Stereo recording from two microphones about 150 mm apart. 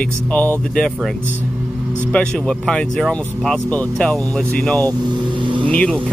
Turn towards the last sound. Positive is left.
turn(degrees=5)  # may be behind; listen again after turning